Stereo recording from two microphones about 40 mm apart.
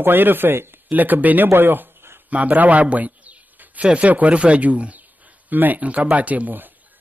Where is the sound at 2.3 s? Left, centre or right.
Right.